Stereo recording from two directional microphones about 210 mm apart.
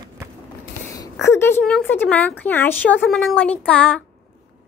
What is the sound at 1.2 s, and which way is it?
A woman's voice, 10° left (ahead or behind).